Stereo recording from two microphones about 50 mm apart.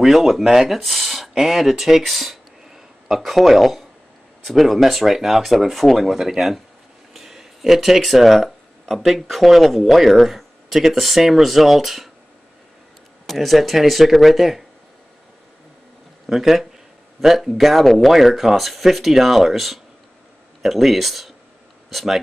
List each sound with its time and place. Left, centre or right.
0.0 s speech: centre
13.3 s speech: centre
16.3 s speech: centre